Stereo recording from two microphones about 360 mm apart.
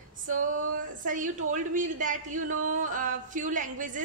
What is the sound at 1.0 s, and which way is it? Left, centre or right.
Speech, right.